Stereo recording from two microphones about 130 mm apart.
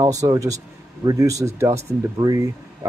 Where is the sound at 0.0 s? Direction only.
25° right (ahead or behind).